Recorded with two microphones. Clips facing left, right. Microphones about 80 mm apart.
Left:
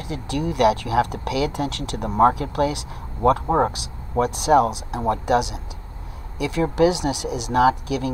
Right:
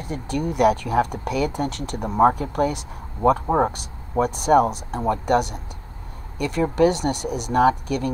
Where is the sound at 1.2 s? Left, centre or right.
Left.